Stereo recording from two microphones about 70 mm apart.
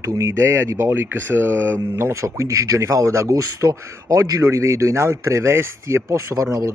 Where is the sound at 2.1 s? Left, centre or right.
Right.